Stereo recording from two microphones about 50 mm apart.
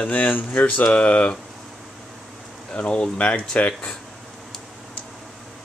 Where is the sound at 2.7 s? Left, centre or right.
Left.